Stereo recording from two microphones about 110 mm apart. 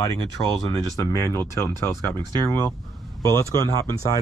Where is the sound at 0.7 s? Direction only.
25° left (ahead or behind).